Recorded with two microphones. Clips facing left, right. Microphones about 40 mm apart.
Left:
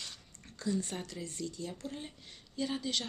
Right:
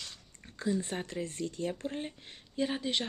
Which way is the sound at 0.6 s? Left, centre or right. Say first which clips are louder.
Right 3 dB; right.